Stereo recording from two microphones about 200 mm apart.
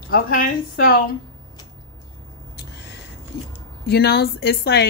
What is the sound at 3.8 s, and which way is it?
A woman's voice, 55° left (ahead or behind).